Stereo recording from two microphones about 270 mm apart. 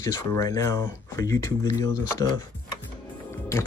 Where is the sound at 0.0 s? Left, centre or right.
Centre.